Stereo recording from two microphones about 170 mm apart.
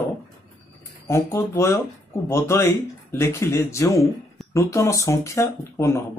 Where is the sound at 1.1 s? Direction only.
15° left (ahead or behind).